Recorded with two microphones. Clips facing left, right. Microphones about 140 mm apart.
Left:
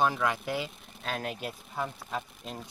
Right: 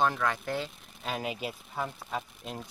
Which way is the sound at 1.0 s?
5° right (ahead or behind).